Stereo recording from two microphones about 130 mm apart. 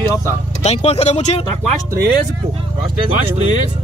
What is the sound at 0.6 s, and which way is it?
Speech, 55° left (ahead or behind).